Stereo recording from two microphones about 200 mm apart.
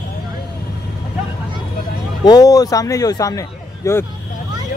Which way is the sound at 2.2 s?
20° left (ahead or behind).